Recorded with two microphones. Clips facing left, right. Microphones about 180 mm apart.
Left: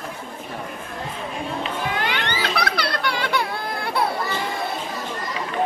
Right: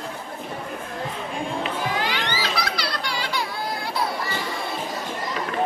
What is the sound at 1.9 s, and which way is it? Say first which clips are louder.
Children playing: left 1 dB; 60° left (ahead or behind).